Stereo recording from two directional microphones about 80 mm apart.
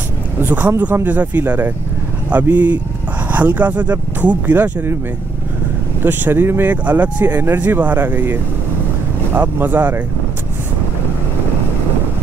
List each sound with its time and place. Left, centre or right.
0.4 s speech: right
6.0 s speech: right